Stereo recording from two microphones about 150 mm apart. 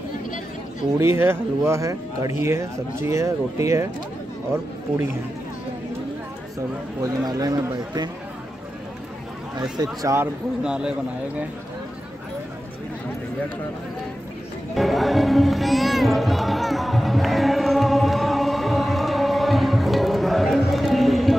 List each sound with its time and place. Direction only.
0.9 s speech: 15° right (ahead or behind)
7.0 s speech: 25° right (ahead or behind)
9.6 s speech: 25° right (ahead or behind)
10.6 s speech: 5° right (ahead or behind)
14.8 s music: centre (ahead or behind)